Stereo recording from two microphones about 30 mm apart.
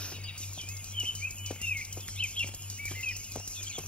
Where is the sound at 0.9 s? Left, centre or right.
Left.